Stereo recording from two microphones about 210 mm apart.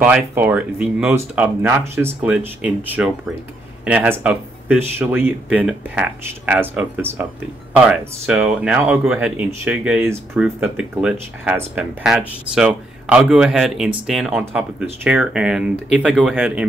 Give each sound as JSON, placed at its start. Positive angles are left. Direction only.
{"t": 0.0, "sound": "speech", "side_deg": -5}